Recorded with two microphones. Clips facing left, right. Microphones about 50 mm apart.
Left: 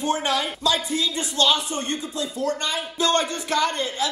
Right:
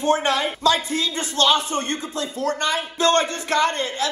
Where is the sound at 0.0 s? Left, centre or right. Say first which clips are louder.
Right 3 dB; right.